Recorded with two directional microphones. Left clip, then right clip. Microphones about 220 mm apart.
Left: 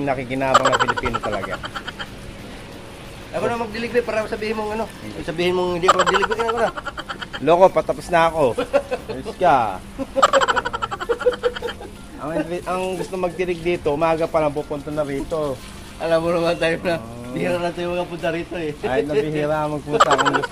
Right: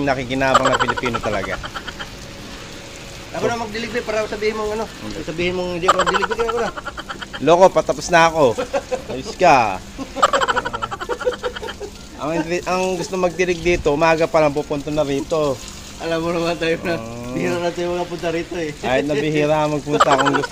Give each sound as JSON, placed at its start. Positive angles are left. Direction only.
{"t": 0.0, "sound": "speech", "side_deg": -10}
{"t": 0.6, "sound": "speech", "side_deg": 0}
{"t": 3.4, "sound": "speech", "side_deg": 10}
{"t": 5.4, "sound": "speech", "side_deg": 40}
{"t": 5.9, "sound": "speech", "side_deg": 0}
{"t": 10.2, "sound": "frog", "side_deg": 0}
{"t": 12.2, "sound": "speech", "side_deg": -20}
{"t": 16.1, "sound": "speech", "side_deg": 35}
{"t": 19.2, "sound": "speech", "side_deg": -20}
{"t": 19.9, "sound": "speech", "side_deg": 0}